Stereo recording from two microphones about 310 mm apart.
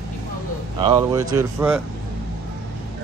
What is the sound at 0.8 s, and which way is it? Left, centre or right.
Speech, centre.